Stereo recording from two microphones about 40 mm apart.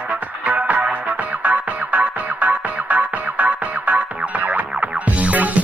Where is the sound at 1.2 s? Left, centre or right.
Right.